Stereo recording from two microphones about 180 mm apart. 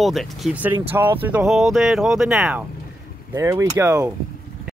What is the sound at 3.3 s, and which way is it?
Speech, 15° right (ahead or behind).